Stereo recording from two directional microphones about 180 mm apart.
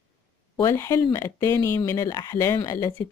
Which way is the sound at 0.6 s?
15° left (ahead or behind).